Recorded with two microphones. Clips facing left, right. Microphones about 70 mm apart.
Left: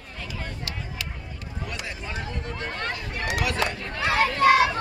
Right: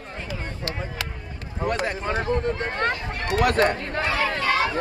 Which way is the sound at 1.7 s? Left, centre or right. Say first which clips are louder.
Right 11 dB; right.